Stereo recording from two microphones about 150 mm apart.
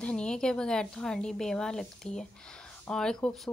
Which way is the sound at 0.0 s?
5° left (ahead or behind).